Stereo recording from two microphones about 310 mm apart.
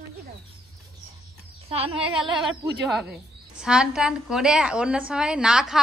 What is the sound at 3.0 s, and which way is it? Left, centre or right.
A woman's voice, centre.